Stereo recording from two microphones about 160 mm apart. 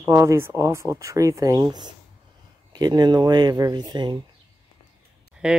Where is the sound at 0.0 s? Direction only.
20° right (ahead or behind).